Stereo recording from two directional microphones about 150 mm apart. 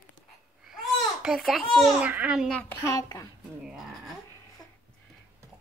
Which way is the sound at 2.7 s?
25° left (ahead or behind).